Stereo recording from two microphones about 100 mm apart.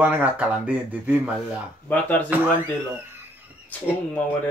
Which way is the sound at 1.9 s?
15° left (ahead or behind).